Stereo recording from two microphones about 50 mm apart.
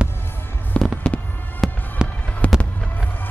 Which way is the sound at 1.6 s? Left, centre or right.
Centre.